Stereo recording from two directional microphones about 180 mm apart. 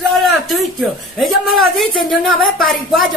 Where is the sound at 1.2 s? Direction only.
Centre (ahead or behind).